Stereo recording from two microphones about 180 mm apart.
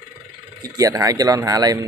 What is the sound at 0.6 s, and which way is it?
Speech, 20° right (ahead or behind).